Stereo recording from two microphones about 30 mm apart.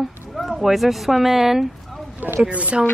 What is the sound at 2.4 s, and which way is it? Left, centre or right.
Speech, right.